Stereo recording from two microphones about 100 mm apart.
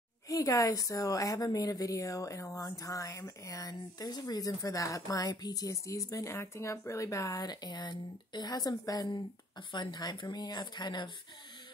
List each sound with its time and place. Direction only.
0.3 s speech: 35° left (ahead or behind)